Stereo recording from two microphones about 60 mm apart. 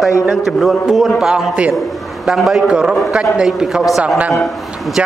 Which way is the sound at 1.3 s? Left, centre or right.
Right.